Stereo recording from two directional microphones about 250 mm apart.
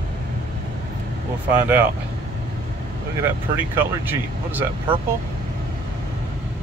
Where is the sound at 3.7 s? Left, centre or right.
Centre.